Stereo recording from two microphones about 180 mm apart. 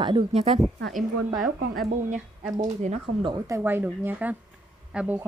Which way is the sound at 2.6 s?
30° right (ahead or behind).